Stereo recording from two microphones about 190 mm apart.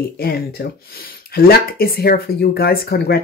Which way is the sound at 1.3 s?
50° left (ahead or behind).